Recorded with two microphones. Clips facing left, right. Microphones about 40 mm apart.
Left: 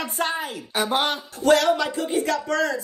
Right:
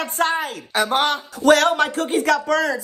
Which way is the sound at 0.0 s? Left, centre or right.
Right.